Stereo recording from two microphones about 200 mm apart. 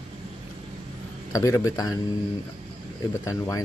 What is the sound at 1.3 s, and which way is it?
Speech, 15° left (ahead or behind).